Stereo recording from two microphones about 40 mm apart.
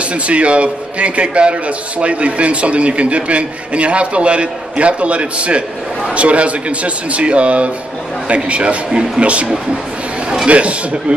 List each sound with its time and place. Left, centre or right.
0.0 s a man's voice: right